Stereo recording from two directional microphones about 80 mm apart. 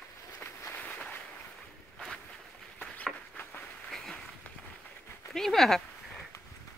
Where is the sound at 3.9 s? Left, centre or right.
Centre.